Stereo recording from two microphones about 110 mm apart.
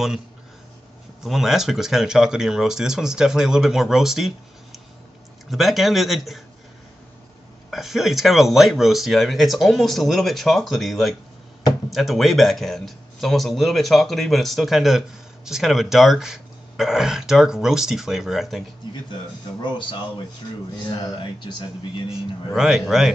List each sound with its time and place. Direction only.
1.2 s speech: 5° right (ahead or behind)
5.5 s speech: centre (ahead or behind)
7.7 s speech: 5° right (ahead or behind)
21.2 s a man's voice: 45° left (ahead or behind)
22.5 s speech: 5° right (ahead or behind)